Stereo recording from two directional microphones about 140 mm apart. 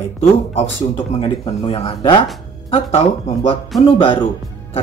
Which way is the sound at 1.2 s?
35° left (ahead or behind).